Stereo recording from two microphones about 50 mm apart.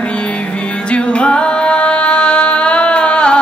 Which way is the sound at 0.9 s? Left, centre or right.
Left.